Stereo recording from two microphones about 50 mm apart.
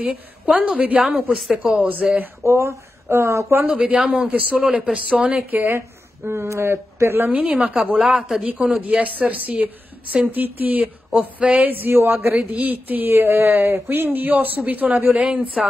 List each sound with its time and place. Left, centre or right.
0.0 s a woman's voice: right
2.4 s speech: right
3.6 s a woman's voice: right
4.6 s speech: centre
4.9 s a woman's voice: right
5.3 s speech: right
5.8 s speech: right
7.2 s speech: right
7.5 s a woman's voice: right
12.4 s a woman's voice: right